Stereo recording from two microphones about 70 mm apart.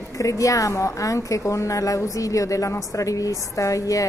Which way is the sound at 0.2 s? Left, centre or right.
Left.